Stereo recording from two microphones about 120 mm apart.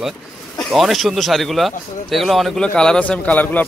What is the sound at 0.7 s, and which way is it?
Speech, centre (ahead or behind).